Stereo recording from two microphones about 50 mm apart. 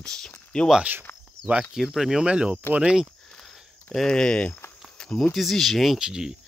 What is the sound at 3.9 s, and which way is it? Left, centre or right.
Speech, centre.